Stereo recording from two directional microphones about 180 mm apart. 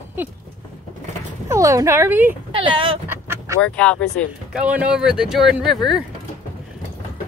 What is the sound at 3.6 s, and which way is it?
Speech, 5° left (ahead or behind).